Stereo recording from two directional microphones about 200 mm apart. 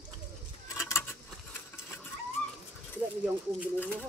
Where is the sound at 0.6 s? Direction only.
15° left (ahead or behind).